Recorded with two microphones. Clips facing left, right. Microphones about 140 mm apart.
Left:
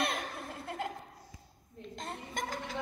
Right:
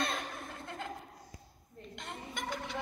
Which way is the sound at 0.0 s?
30° left (ahead or behind).